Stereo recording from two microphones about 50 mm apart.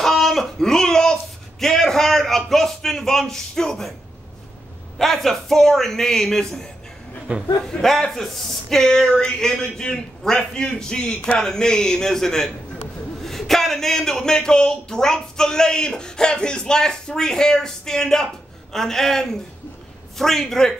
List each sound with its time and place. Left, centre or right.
0.0 s a sound: centre
1.6 s a man's voice: centre
4.9 s a man's voice: centre
7.3 s speech: right
7.6 s a man's voice: centre